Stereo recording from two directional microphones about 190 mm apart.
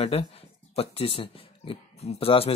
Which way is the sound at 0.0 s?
30° left (ahead or behind).